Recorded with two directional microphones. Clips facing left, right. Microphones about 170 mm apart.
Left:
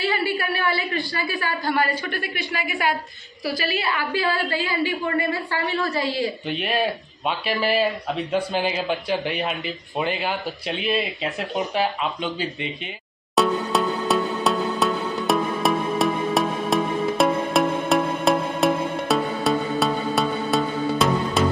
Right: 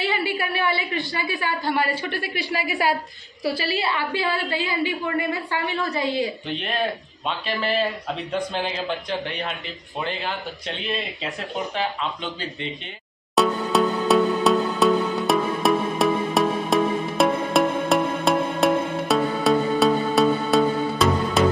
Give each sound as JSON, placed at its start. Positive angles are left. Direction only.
{"t": 0.0, "sound": "a woman's voice", "side_deg": -20}
{"t": 6.5, "sound": "speech", "side_deg": 10}
{"t": 13.4, "sound": "music", "side_deg": 0}